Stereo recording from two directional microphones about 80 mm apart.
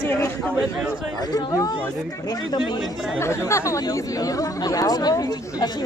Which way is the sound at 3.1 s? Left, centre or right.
Left.